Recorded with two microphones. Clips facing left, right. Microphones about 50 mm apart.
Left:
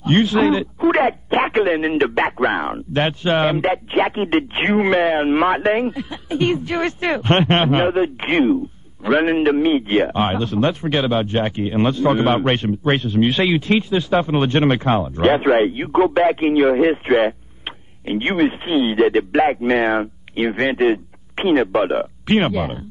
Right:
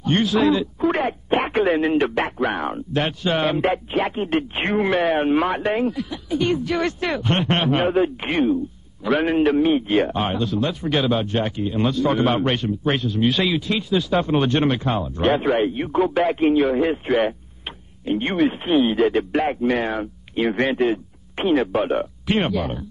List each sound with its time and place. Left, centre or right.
0.0 s speech: left
0.9 s radio: left
1.6 s speech: centre
3.9 s speech: left
7.8 s a man's voice: centre
8.2 s speech: left
9.0 s speech: left